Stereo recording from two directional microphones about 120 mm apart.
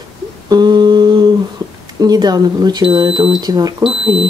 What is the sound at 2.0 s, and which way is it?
Speech, 35° right (ahead or behind).